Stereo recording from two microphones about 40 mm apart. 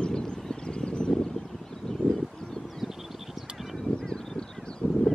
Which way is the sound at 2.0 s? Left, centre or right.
Right.